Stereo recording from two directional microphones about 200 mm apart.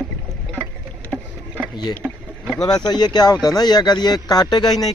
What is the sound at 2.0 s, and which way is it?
Rowboat, 5° left (ahead or behind).